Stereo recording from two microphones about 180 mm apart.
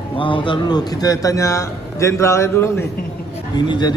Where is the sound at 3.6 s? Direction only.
25° left (ahead or behind).